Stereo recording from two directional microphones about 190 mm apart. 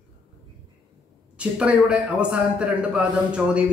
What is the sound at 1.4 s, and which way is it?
A man's voice, 5° right (ahead or behind).